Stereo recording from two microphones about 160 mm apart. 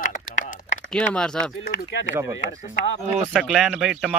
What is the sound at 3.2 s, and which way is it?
Speech, 5° right (ahead or behind).